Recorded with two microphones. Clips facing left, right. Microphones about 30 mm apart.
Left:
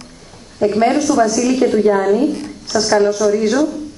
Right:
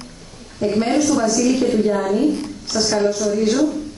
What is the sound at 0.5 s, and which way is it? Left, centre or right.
A woman's voice, left.